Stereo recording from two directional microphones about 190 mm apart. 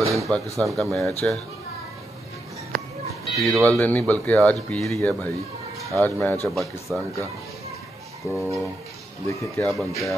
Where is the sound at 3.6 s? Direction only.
10° left (ahead or behind).